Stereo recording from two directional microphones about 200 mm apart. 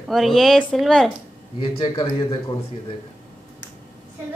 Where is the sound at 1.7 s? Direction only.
25° left (ahead or behind).